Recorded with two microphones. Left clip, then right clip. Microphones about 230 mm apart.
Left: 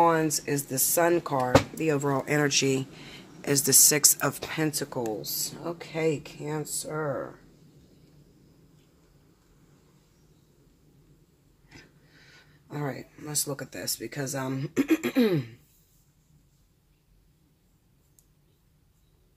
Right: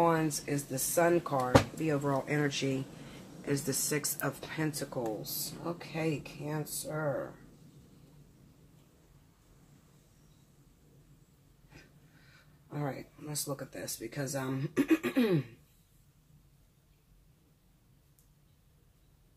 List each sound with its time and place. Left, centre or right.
0.0 s speech: left
12.6 s speech: left